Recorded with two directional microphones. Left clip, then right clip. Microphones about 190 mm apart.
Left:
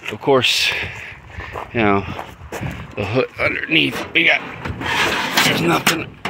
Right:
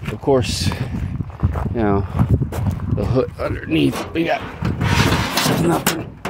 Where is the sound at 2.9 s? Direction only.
35° right (ahead or behind).